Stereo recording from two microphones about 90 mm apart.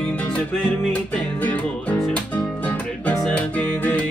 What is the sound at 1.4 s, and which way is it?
Music, 20° left (ahead or behind).